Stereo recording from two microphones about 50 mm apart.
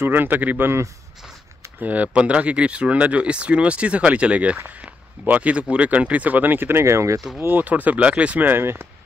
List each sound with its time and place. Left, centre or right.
0.0 s speech: right
1.8 s speech: right
6.8 s speech: right
7.3 s speech: right
8.5 s speech: right